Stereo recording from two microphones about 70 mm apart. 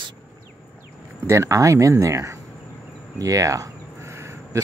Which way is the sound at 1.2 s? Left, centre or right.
Right.